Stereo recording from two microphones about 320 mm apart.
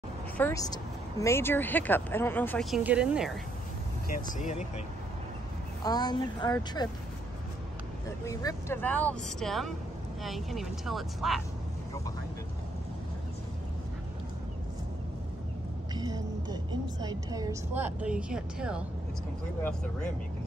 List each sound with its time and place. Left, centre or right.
0.4 s speech: centre
4.1 s speech: left
5.9 s speech: centre
8.3 s speech: centre
15.9 s a sound: centre
17.0 s a woman's voice: centre